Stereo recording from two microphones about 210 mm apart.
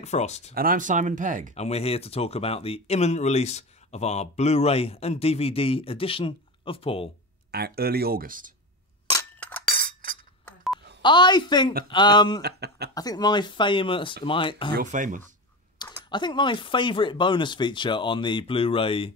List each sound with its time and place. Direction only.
0.0 s speech: 30° left (ahead or behind)
0.6 s speech: 40° right (ahead or behind)
1.5 s speech: 30° left (ahead or behind)
7.5 s speech: 50° right (ahead or behind)
9.1 s chink: 5° left (ahead or behind)
9.7 s chink: 40° right (ahead or behind)
10.4 s a sound: centre (ahead or behind)
11.0 s speech: 20° left (ahead or behind)
12.4 s speech: 50° right (ahead or behind)
12.9 s speech: 20° left (ahead or behind)
14.8 s speech: 40° right (ahead or behind)
16.1 s speech: 20° left (ahead or behind)